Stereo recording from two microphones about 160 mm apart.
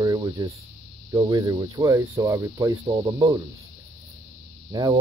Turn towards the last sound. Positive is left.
turn(degrees=-25)  # may be behind; listen again after turning